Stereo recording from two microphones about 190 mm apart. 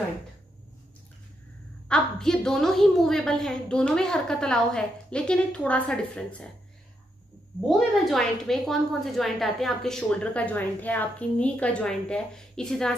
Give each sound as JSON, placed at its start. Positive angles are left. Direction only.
{"t": 1.9, "sound": "a woman's voice", "side_deg": 5}
{"t": 7.6, "sound": "a woman's voice", "side_deg": 0}